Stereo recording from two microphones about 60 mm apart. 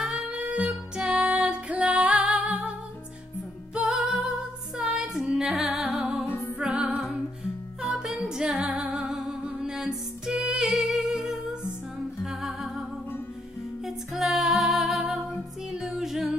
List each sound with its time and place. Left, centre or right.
0.4 s music: right
3.7 s music: centre
8.7 s music: centre
13.8 s music: centre